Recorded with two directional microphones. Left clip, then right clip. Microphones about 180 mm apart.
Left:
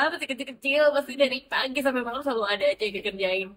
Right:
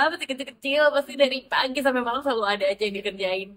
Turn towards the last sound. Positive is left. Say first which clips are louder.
# even
turn(degrees=-10)  # may be behind; listen again after turning